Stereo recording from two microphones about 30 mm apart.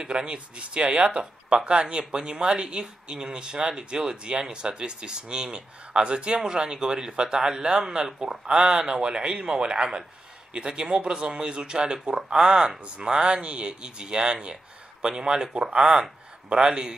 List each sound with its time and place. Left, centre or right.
0.0 s speech: right